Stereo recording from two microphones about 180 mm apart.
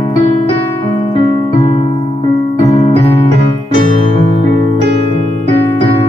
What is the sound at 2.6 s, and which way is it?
Keyboard, 20° left (ahead or behind).